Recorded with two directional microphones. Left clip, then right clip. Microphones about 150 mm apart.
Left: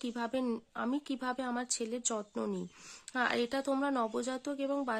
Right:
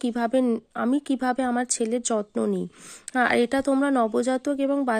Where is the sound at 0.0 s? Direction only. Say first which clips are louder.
Right 12 dB; 35° right (ahead or behind).